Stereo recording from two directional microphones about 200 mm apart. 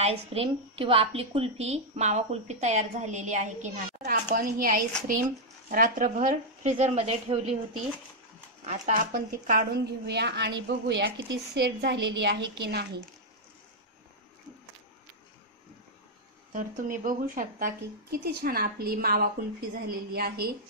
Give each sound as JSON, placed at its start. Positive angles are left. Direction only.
{"t": 0.0, "sound": "a woman's voice", "side_deg": -30}
{"t": 8.6, "sound": "a woman's voice", "side_deg": -35}
{"t": 16.5, "sound": "a woman's voice", "side_deg": -40}